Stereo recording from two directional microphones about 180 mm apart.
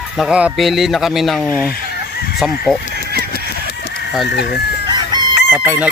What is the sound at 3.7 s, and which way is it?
Fowl, 65° left (ahead or behind).